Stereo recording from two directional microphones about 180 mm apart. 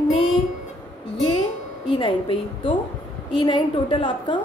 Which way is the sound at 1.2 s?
25° left (ahead or behind).